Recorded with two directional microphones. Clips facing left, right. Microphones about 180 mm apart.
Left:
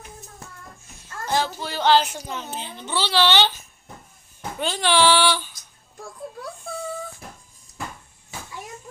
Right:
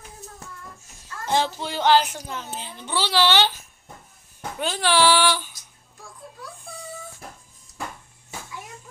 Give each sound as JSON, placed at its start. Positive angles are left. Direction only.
{"t": 1.2, "sound": "speech", "side_deg": -20}
{"t": 4.6, "sound": "speech", "side_deg": -5}